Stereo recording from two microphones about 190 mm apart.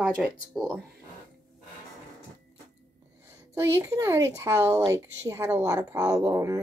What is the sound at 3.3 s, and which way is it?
A woman's voice, 15° right (ahead or behind).